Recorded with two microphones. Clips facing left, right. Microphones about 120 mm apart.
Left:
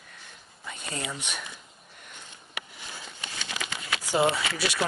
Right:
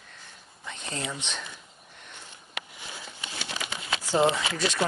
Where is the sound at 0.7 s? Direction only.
5° left (ahead or behind).